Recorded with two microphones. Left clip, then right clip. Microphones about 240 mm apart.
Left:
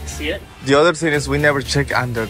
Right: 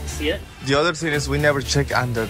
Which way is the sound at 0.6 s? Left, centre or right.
Centre.